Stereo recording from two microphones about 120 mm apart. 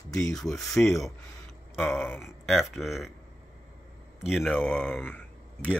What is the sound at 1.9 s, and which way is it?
Speech, 20° left (ahead or behind).